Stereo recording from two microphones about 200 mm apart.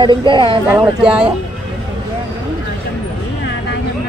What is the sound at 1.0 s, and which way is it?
Speech, 5° right (ahead or behind).